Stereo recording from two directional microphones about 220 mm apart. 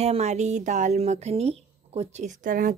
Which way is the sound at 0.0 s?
30° right (ahead or behind).